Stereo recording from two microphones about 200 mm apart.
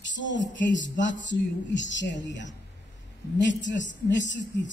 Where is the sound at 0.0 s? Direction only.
65° left (ahead or behind).